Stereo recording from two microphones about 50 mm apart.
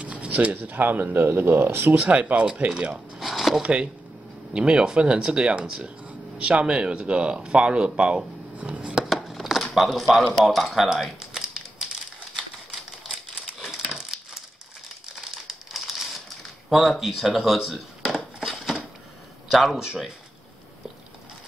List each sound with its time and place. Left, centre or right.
0.0 s speech: right
3.2 s a sound: centre
3.6 s speech: right
8.5 s a sound: right
9.0 s a sound: centre
9.8 s speech: centre
11.0 s typing: centre
13.9 s crushing: centre
15.1 s crumpling: centre
16.6 s speech: centre
18.4 s a sound: centre
19.5 s speech: centre